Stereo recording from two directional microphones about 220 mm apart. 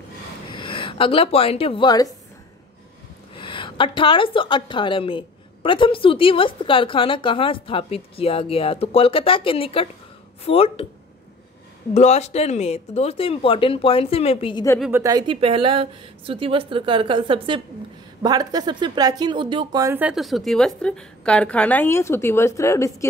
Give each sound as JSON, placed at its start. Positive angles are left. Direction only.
{"t": 0.5, "sound": "a woman's voice", "side_deg": 20}
{"t": 3.3, "sound": "a woman's voice", "side_deg": 20}
{"t": 11.9, "sound": "a woman's voice", "side_deg": 30}
{"t": 14.8, "sound": "speech", "side_deg": -10}